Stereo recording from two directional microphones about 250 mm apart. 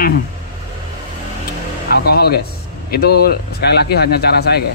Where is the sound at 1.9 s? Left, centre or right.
Left.